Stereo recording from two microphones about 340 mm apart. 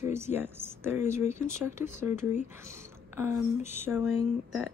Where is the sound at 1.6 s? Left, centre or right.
Centre.